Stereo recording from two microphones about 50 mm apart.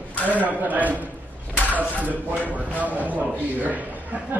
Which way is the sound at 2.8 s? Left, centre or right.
Right.